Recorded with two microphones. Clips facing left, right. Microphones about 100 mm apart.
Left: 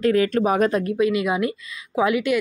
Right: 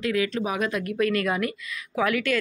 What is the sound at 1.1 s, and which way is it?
Speech, 15° left (ahead or behind).